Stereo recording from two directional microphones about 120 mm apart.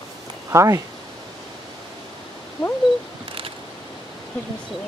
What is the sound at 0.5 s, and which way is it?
Speech, 25° right (ahead or behind).